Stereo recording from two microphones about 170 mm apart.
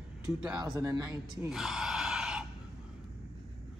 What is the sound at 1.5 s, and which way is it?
Gasp, 5° right (ahead or behind).